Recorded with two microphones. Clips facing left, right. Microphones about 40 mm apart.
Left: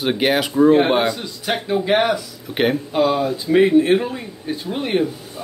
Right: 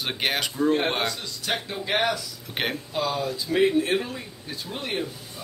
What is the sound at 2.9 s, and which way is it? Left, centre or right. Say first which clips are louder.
Speech: left 7 dB; left.